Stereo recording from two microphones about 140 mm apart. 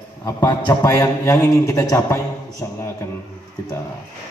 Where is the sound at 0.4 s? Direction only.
30° left (ahead or behind).